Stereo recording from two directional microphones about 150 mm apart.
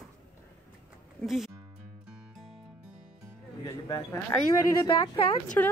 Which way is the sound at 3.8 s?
25° left (ahead or behind).